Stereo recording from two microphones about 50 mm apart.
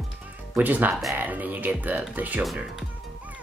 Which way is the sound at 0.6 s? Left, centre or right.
Right.